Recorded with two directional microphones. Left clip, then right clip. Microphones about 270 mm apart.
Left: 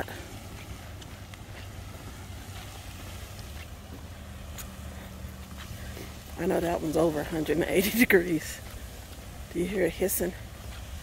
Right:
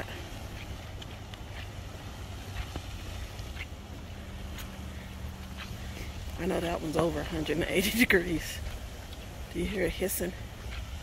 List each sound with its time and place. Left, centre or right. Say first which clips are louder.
6.4 s speech: left 4 dB; centre
9.6 s speech: left 4 dB; centre